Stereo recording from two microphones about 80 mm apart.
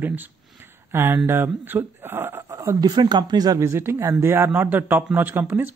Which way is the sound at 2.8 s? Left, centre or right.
Right.